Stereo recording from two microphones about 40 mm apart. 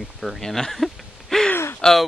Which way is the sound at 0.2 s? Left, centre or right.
Centre.